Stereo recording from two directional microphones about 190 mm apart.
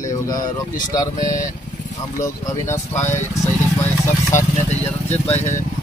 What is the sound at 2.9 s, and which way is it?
Speech, 40° left (ahead or behind).